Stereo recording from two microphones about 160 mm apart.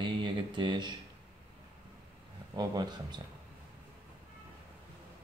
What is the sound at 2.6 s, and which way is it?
Speech, 25° right (ahead or behind).